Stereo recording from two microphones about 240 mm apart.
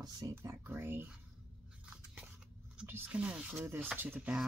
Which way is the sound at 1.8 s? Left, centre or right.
Centre.